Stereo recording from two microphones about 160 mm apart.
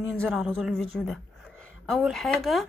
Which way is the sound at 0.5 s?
Centre (ahead or behind).